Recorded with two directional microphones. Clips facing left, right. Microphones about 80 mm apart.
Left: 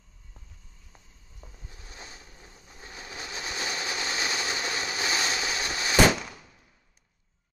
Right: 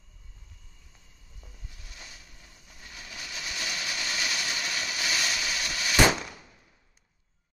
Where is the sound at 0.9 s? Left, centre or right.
Left.